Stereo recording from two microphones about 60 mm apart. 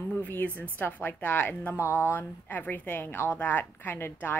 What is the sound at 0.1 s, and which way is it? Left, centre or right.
A woman's voice, left.